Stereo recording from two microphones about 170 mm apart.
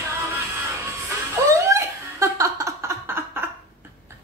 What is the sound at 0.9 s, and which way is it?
Laughter, 15° right (ahead or behind).